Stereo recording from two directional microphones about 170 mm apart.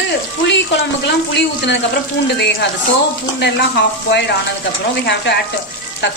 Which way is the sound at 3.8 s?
90° left.